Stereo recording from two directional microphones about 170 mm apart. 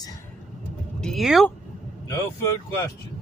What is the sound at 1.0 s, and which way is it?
Speech, centre (ahead or behind).